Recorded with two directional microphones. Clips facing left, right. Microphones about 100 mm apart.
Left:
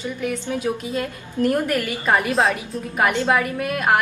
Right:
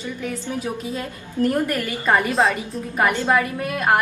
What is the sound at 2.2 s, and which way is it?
Speech, centre (ahead or behind).